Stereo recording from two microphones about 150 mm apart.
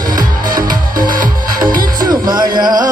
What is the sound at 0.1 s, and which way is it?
Music, 70° right (ahead or behind).